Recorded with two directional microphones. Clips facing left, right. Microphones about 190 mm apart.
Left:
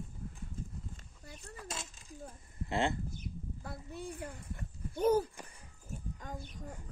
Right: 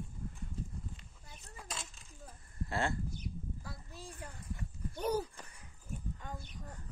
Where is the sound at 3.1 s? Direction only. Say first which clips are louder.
Right 1 dB; 55° left (ahead or behind).